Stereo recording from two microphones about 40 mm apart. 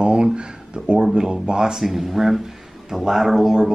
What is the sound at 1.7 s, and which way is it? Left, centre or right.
Speech, centre.